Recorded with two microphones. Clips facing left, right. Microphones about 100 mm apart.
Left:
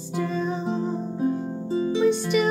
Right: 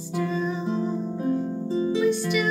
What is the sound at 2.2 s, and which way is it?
Music, 30° left (ahead or behind).